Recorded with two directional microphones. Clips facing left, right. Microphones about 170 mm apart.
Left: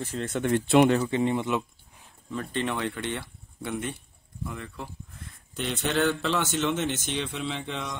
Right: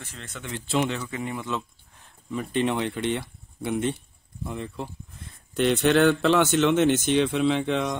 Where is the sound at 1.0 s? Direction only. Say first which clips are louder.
Left 6 dB; 30° left (ahead or behind).